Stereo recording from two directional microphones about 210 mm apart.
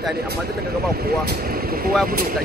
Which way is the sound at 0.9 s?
45° right (ahead or behind).